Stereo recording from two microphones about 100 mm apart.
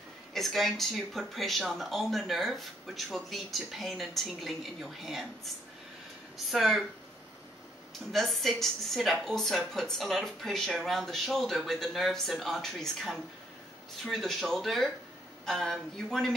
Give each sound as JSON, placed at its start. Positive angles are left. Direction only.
{"t": 0.3, "sound": "speech", "side_deg": 0}
{"t": 8.1, "sound": "speech", "side_deg": 0}